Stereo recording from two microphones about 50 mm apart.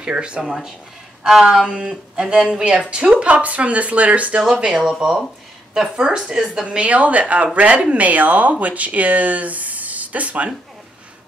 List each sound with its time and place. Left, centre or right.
0.0 s speech: right
0.5 s speech: centre; by 4.4 s right
4.7 s speech: centre; by 10.5 s right